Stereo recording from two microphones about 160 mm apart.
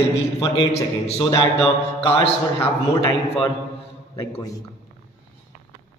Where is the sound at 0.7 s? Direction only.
40° left (ahead or behind).